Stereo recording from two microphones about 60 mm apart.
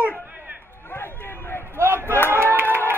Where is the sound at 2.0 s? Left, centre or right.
Left.